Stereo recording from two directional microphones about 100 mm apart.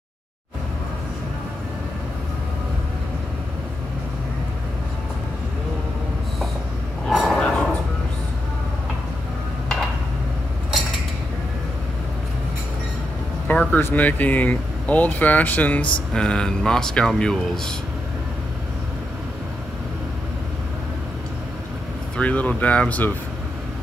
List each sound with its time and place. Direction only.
7.1 s a sound: centre (ahead or behind)
13.5 s vehicle: 15° left (ahead or behind)
13.8 s speech: 15° left (ahead or behind)
22.1 s speech: 15° left (ahead or behind)